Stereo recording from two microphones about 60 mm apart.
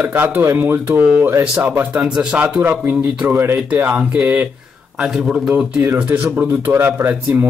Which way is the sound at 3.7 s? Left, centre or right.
Right.